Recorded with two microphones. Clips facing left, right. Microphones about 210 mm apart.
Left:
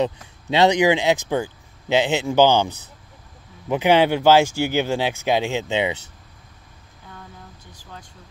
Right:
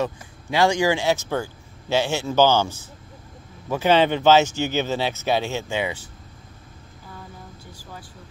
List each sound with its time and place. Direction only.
0.0 s speech: 20° left (ahead or behind)